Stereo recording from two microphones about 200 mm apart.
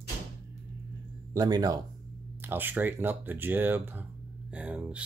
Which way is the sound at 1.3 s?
20° right (ahead or behind).